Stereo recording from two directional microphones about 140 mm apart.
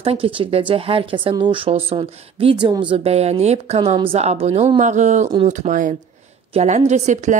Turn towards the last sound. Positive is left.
turn(degrees=-60)  # may be behind; listen again after turning